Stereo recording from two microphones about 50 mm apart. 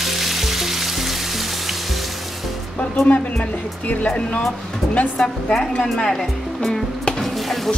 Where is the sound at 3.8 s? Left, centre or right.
Left.